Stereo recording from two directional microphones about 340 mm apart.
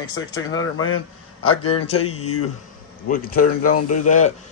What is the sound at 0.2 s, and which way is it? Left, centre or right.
A man's voice, left.